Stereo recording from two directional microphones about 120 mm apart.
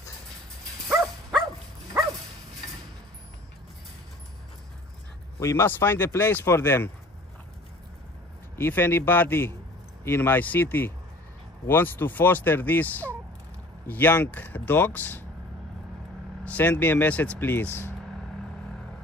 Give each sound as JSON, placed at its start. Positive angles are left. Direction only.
{"t": 0.8, "sound": "dog", "side_deg": 0}
{"t": 5.4, "sound": "speech", "side_deg": 20}
{"t": 8.5, "sound": "speech", "side_deg": 20}
{"t": 16.4, "sound": "speech", "side_deg": 15}